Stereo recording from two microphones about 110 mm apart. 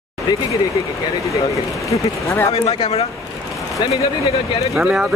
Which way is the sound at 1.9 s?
25° left (ahead or behind).